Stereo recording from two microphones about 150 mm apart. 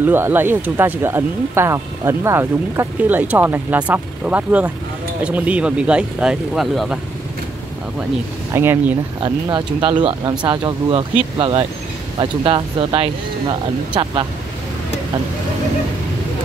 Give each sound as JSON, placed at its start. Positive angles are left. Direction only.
{"t": 0.0, "sound": "speech", "side_deg": -15}
{"t": 8.5, "sound": "speech", "side_deg": -15}
{"t": 9.2, "sound": "speech", "side_deg": -30}